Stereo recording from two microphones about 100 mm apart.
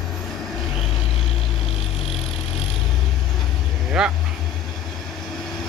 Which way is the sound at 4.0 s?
5° right (ahead or behind).